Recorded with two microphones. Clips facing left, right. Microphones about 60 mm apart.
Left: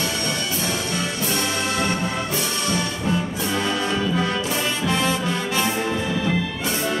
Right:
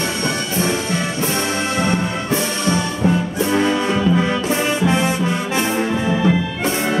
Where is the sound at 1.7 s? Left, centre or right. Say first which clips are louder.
Right 4 dB; right.